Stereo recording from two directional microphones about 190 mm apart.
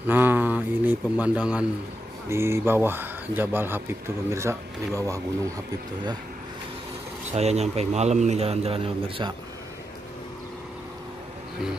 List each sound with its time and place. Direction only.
0.0 s a sound: 10° right (ahead or behind)
2.2 s speech: 15° right (ahead or behind)
7.3 s speech: 35° right (ahead or behind)